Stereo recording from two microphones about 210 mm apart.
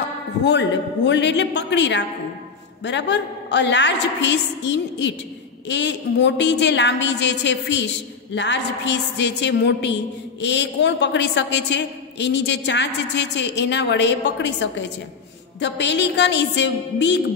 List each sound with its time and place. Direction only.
0.5 s a woman's voice: 55° left (ahead or behind)